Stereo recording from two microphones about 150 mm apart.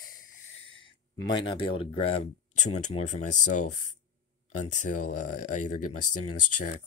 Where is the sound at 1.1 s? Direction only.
30° left (ahead or behind); by 3.7 s 55° left (ahead or behind).